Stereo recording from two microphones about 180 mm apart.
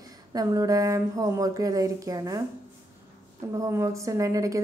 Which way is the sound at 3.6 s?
15° right (ahead or behind).